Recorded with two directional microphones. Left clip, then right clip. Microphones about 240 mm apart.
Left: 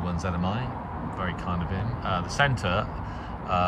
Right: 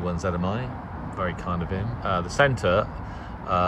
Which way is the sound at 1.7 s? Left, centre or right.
Centre.